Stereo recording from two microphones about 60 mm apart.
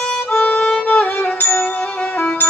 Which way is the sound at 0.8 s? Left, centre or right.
Left.